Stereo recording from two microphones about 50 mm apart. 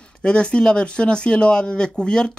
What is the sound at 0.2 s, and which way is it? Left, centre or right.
Speech, left.